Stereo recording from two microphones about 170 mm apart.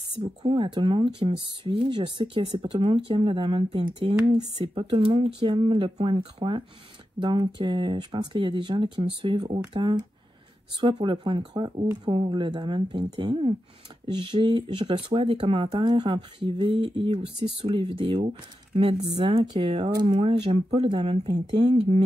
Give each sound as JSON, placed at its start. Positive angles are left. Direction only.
{"t": 0.2, "sound": "speech", "side_deg": -35}